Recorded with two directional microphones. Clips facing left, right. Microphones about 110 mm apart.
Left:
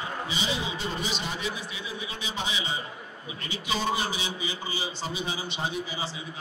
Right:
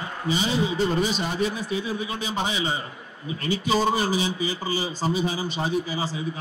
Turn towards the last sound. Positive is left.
turn(degrees=-40)  # may be behind; listen again after turning